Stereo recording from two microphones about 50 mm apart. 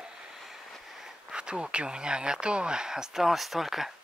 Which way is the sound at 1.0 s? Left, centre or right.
Centre.